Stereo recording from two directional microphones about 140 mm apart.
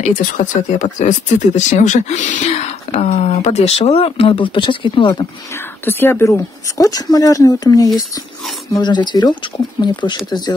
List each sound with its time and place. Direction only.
0.0 s speech: 65° left (ahead or behind); by 5.2 s 35° left (ahead or behind)
5.9 s speech: 15° left (ahead or behind); by 10.5 s 30° left (ahead or behind)